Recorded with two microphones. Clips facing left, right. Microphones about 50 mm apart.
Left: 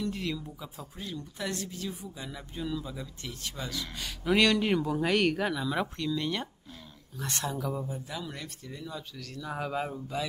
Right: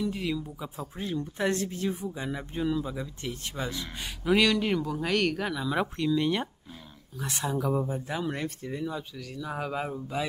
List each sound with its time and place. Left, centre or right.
0.0 s speech: centre
0.7 s speech: right
4.2 s speech: centre
7.7 s speech: right
9.1 s speech: centre